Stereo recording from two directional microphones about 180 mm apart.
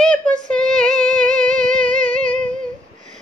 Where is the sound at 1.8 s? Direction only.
45° right (ahead or behind).